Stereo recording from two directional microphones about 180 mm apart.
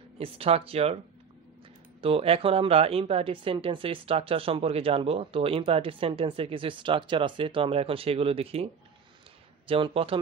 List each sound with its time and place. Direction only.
0.2 s speech: 30° right (ahead or behind)
2.0 s speech: 30° right (ahead or behind)
9.7 s speech: 30° right (ahead or behind)